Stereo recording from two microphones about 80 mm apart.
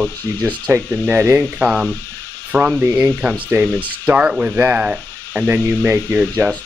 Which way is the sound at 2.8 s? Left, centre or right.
Right.